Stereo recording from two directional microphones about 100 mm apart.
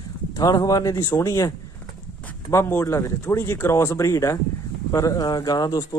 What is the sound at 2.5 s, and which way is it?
Speech, 25° left (ahead or behind).